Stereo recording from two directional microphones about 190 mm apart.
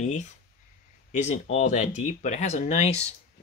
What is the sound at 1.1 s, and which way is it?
Speech, 35° left (ahead or behind).